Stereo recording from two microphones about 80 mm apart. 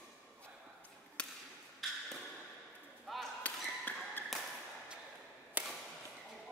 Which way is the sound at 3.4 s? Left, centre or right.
Left.